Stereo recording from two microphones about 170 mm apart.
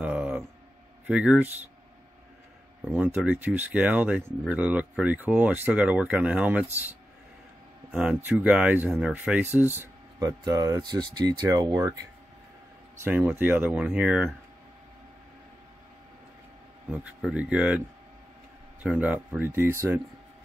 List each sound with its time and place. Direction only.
0.0 s a sound: 10° right (ahead or behind)
1.0 s speech: 5° right (ahead or behind)
2.8 s speech: 10° right (ahead or behind)
13.0 s speech: 10° right (ahead or behind)
16.9 s speech: 5° right (ahead or behind)